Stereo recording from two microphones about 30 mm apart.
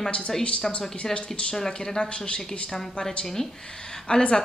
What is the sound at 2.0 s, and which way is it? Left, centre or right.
Speech, left.